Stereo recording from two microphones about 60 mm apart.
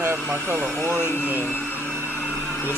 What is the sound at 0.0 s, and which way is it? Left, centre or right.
Speech, right.